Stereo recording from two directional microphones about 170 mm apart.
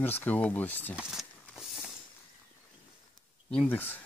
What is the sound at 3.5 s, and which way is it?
Speech, 10° left (ahead or behind).